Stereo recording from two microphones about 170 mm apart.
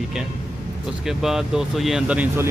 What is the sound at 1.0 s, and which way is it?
Speech, centre (ahead or behind).